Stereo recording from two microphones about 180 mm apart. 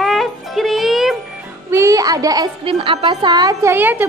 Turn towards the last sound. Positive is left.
turn(degrees=-10)  # may be behind; listen again after turning